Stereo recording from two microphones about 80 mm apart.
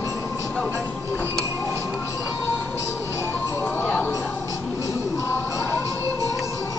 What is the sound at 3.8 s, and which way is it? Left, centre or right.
Music, centre.